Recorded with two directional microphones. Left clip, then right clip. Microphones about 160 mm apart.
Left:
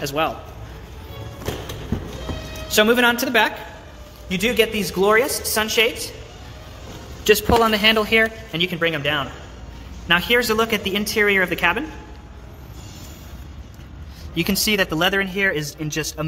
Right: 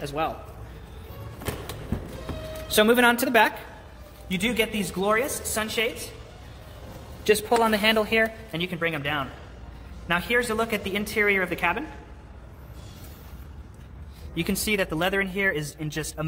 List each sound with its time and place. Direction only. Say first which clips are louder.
0.0 s a woman's voice: left 6 dB; 10° left (ahead or behind)
2.7 s a woman's voice: left 3 dB; 15° right (ahead or behind)
4.3 s a woman's voice: left 7 dB; 5° right (ahead or behind)
7.2 s a man's voice: left 5 dB; 5° right (ahead or behind)
14.3 s a man's voice: left 6 dB; 5° left (ahead or behind)